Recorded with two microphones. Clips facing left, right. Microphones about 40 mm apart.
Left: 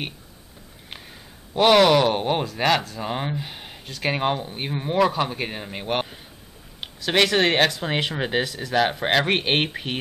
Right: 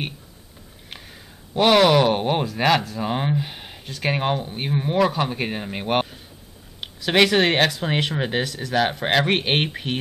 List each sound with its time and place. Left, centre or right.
0.8 s speech: centre